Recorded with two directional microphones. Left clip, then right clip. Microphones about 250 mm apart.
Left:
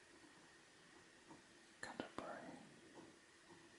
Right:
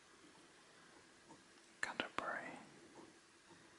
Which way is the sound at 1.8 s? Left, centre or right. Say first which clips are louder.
Right 8 dB; centre.